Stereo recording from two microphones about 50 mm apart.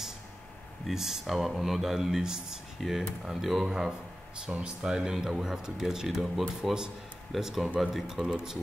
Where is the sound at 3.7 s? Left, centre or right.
Centre.